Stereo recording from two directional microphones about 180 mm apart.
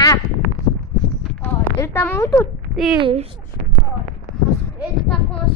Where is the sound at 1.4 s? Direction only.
10° left (ahead or behind).